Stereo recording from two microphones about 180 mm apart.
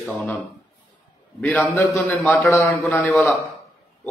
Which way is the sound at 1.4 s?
10° left (ahead or behind).